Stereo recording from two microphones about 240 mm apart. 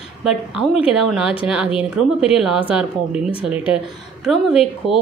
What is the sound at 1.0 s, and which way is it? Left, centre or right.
A woman's voice, centre.